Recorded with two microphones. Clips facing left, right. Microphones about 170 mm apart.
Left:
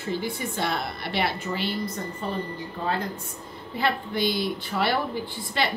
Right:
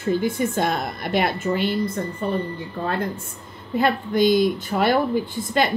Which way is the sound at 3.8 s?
45° right (ahead or behind).